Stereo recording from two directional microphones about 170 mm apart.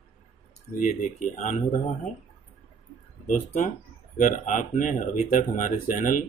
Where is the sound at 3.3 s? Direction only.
50° left (ahead or behind).